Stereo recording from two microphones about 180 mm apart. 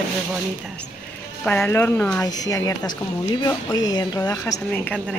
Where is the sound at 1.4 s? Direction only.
10° left (ahead or behind).